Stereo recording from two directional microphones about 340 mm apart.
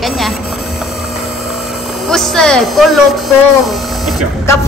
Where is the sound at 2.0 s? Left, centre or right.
Centre.